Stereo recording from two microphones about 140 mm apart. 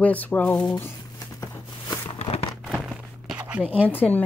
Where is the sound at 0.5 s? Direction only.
30° left (ahead or behind).